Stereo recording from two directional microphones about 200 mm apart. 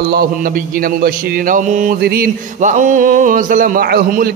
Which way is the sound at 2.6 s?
40° right (ahead or behind).